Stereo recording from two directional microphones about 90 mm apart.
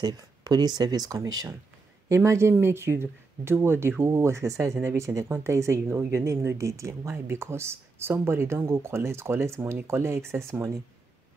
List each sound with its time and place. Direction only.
0.0 s speech: 50° right (ahead or behind); by 10.7 s 35° right (ahead or behind)